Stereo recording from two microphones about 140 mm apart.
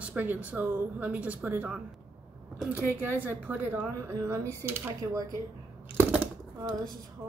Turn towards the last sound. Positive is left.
turn(degrees=-15)  # may be behind; listen again after turning